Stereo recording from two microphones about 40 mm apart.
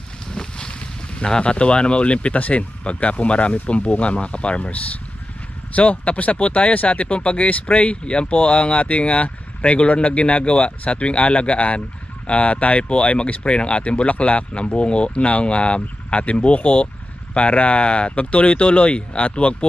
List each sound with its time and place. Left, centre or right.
0.3 s boat: centre
1.4 s speech: left